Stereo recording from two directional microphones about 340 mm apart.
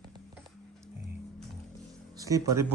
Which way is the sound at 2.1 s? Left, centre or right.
Centre.